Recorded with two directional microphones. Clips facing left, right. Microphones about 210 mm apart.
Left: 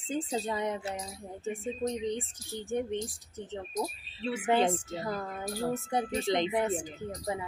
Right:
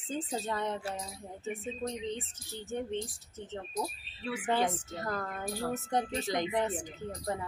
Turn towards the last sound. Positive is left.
turn(degrees=10)  # may be behind; listen again after turning